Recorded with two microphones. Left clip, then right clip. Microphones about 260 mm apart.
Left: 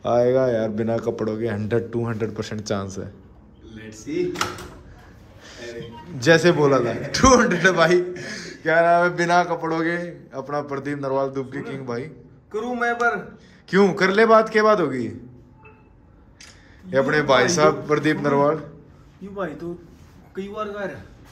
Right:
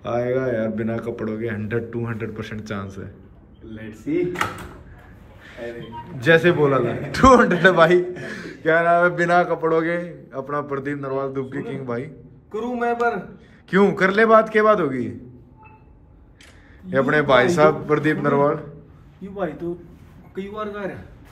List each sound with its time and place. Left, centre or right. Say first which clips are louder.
0.0 s speech: left 4 dB; centre
6.2 s a man's voice: even; centre
16.9 s a man's voice: right 1 dB; centre